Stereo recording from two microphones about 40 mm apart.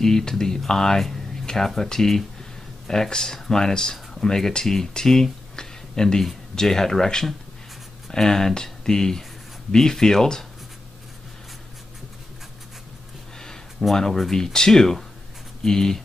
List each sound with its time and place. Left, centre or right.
0.0 s speech: centre
1.0 s a sound: centre
1.8 s speech: centre
13.8 s speech: centre